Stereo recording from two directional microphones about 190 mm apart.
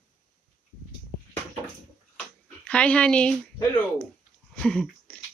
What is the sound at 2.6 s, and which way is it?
Speech, 5° left (ahead or behind).